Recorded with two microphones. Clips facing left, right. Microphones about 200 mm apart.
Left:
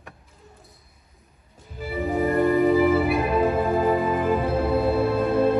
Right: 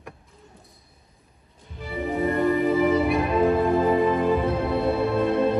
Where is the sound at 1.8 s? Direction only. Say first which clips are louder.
Left 2 dB; 5° left (ahead or behind).